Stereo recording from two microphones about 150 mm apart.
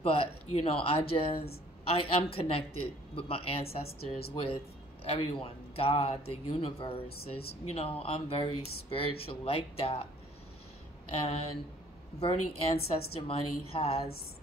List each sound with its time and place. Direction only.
0.0 s speech: 40° left (ahead or behind)
11.1 s speech: 40° left (ahead or behind)